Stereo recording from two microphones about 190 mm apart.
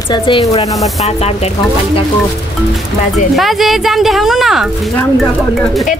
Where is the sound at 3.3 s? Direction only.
Centre (ahead or behind).